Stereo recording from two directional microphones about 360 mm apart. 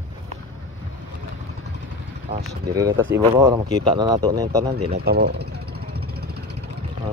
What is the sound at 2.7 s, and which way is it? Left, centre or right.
Speech, centre.